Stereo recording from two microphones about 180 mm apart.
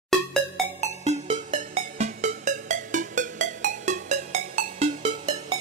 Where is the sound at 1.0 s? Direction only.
40° right (ahead or behind).